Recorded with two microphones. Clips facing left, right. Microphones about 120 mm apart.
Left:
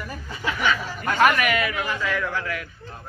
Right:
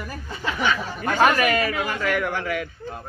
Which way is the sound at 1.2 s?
30° right (ahead or behind).